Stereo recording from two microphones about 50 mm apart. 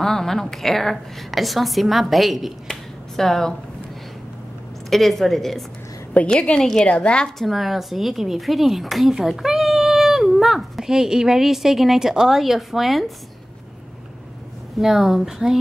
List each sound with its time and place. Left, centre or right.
0.0 s speech: centre
2.7 s a sound: centre
4.8 s speech: centre
6.1 s a woman's voice: centre
6.9 s a woman's voice: centre
7.3 s speech: centre
14.8 s a woman's voice: centre